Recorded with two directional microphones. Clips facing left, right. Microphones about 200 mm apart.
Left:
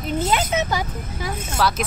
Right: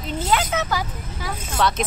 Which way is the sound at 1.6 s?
5° left (ahead or behind).